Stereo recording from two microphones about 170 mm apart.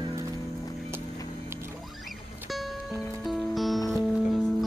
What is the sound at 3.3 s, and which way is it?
Music, centre (ahead or behind).